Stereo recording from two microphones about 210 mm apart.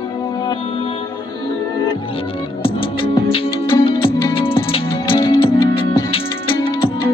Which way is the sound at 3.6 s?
15° left (ahead or behind).